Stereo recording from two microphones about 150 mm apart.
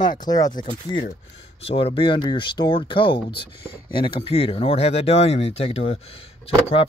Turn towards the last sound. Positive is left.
turn(degrees=40)  # may be behind; listen again after turning